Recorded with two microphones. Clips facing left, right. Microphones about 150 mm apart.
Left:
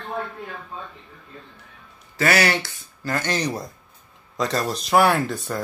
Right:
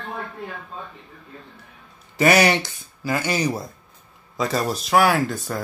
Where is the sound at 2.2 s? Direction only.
20° right (ahead or behind); by 5.6 s centre (ahead or behind).